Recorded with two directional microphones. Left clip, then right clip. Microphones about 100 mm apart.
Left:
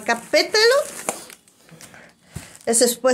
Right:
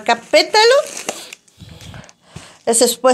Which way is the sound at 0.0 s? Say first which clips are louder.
Right 6 dB; 15° right (ahead or behind).